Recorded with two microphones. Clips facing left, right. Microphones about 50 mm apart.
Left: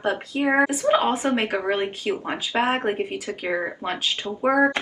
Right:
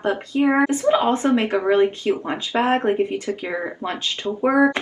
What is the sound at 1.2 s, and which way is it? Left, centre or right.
Speech, centre.